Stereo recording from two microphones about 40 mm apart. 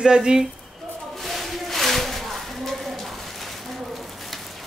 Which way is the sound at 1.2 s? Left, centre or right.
Centre.